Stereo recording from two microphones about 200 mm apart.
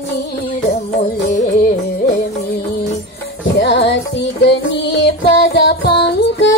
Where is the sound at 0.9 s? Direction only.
40° left (ahead or behind).